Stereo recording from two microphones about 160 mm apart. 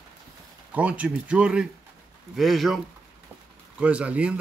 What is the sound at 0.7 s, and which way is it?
Speech, 10° right (ahead or behind).